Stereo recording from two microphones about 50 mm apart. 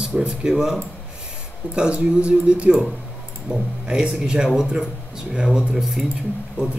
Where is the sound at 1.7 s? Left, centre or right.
Right.